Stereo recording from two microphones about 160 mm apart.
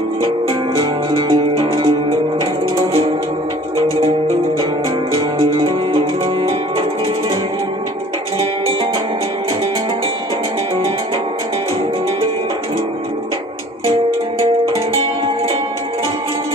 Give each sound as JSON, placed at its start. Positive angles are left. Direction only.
{"t": 0.2, "sound": "music", "side_deg": -35}
{"t": 3.7, "sound": "music", "side_deg": 20}
{"t": 5.1, "sound": "music", "side_deg": -35}